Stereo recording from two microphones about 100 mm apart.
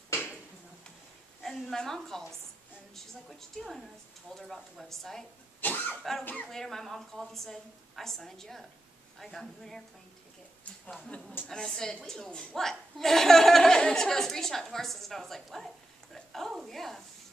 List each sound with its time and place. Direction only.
1.4 s a sound: 5° left (ahead or behind)
2.9 s a woman's voice: centre (ahead or behind)
5.6 s speech: 20° left (ahead or behind)
6.5 s a woman's voice: 5° left (ahead or behind)
11.1 s a woman's voice: 5° left (ahead or behind)